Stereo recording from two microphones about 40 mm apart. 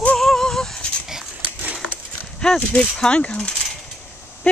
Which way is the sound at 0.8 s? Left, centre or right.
Left.